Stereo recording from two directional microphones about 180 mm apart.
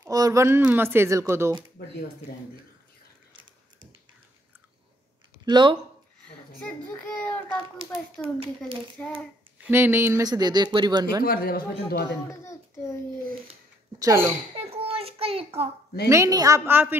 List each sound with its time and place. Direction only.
0.0 s speech: 20° right (ahead or behind)
1.8 s speech: 60° left (ahead or behind)
5.4 s speech: 25° right (ahead or behind)
6.2 s a child's voice: 10° left (ahead or behind)
9.6 s speech: 10° right (ahead or behind)
11.2 s speech: 55° left (ahead or behind)
12.3 s a child's voice: 15° left (ahead or behind)
13.9 s speech: 15° right (ahead or behind)
14.6 s a child's voice: 35° right (ahead or behind)
16.1 s speech: 20° right (ahead or behind)